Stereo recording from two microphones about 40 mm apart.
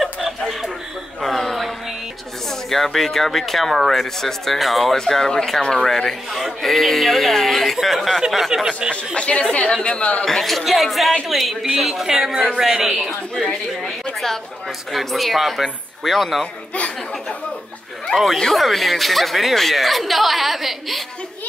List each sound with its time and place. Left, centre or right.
0.0 s chuckle: centre
1.2 s a sound: centre
2.7 s speech: centre
4.9 s speech: centre
6.3 s speech: centre
8.5 s a man's voice: centre
8.9 s a woman's voice: left
10.2 s a man's voice: centre
14.9 s speech: centre
18.1 s speech: centre